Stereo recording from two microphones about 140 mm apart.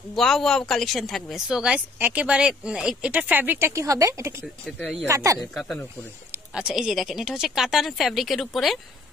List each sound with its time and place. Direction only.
0.1 s speech: 5° left (ahead or behind); by 4.5 s 20° right (ahead or behind)
4.7 s speech: 5° left (ahead or behind)
5.0 s speech: 20° right (ahead or behind)
5.4 s speech: centre (ahead or behind)